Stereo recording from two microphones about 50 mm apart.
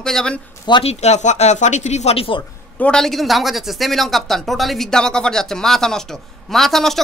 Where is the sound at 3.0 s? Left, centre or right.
Centre.